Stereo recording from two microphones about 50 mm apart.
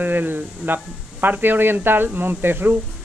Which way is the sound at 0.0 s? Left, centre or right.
Right.